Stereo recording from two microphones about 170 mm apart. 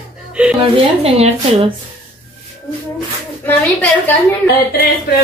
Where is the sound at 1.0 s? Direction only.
35° right (ahead or behind).